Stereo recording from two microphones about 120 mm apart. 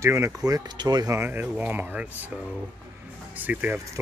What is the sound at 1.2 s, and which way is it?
Speech, 15° right (ahead or behind).